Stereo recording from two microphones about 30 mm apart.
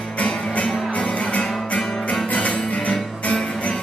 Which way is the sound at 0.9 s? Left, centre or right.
Left.